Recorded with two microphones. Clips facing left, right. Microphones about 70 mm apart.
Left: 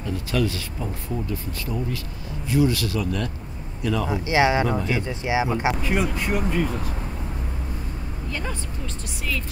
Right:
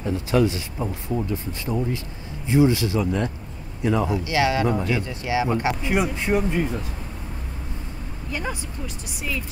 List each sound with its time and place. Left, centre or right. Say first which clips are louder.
0.0 s speech: right 4 dB; right
4.1 s speech: left 2 dB; left
5.9 s speech: right 2 dB; centre
8.3 s speech: right 2 dB; centre